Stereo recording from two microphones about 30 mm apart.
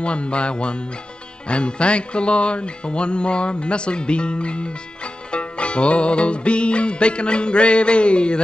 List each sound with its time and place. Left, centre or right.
0.0 s music: left